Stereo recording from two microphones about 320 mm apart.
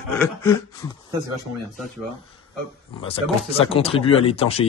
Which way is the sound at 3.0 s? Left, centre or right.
Centre.